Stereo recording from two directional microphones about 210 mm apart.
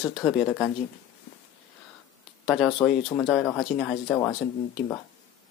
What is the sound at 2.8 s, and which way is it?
Speech, 20° left (ahead or behind).